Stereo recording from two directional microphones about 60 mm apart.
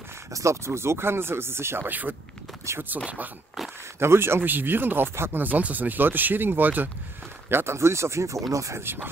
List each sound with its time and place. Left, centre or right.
0.3 s speech: right
1.9 s speech: right
4.0 s speech: right
7.4 s speech: right
8.8 s speech: right